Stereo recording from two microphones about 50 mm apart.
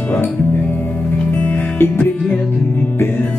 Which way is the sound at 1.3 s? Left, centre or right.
Left.